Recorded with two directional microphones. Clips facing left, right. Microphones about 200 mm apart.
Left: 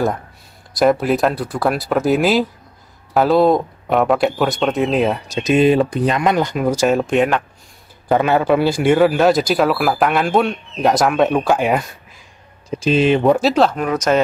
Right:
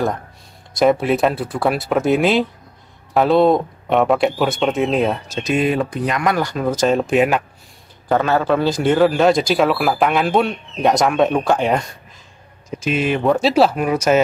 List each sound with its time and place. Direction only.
0.7 s speech: centre (ahead or behind)
5.3 s speech: 20° left (ahead or behind)
7.1 s speech: 5° right (ahead or behind)
8.1 s speech: 15° left (ahead or behind)
12.6 s speech: 30° left (ahead or behind)
13.3 s speech: centre (ahead or behind)